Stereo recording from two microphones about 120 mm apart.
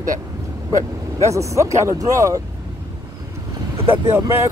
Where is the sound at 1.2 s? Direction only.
25° right (ahead or behind).